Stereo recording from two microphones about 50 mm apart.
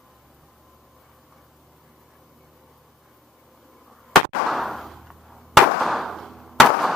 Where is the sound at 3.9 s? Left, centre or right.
Centre.